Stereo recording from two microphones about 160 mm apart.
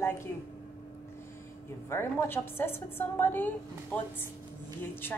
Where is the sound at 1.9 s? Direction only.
15° left (ahead or behind).